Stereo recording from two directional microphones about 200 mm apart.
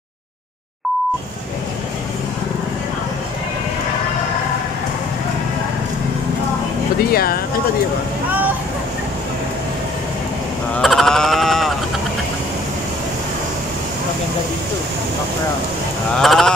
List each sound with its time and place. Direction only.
7.0 s speech: 50° left (ahead or behind)
10.8 s sheep: centre (ahead or behind)
16.2 s a sound: centre (ahead or behind)